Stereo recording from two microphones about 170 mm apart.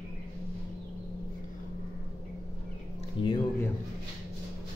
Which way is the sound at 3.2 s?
30° left (ahead or behind).